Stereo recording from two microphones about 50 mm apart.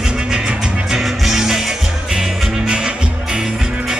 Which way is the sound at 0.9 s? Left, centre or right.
Centre.